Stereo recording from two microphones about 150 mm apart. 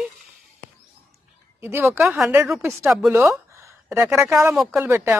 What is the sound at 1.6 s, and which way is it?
A woman's voice, 15° right (ahead or behind).